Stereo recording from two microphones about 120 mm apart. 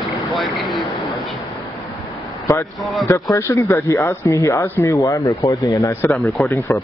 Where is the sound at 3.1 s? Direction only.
25° left (ahead or behind).